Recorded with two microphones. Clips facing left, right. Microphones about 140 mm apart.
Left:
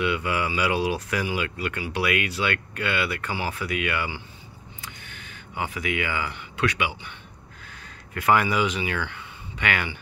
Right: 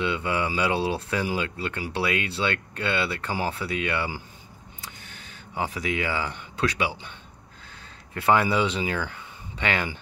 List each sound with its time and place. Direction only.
0.0 s speech: 25° right (ahead or behind)
5.0 s a sound: 35° right (ahead or behind)
5.6 s speech: 35° right (ahead or behind)
8.1 s speech: 25° right (ahead or behind)